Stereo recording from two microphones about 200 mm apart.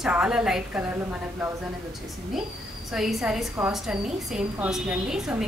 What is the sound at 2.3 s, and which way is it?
A woman's voice, centre (ahead or behind).